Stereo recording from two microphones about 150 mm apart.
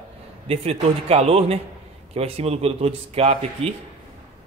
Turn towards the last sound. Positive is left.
turn(degrees=-40)  # may be behind; listen again after turning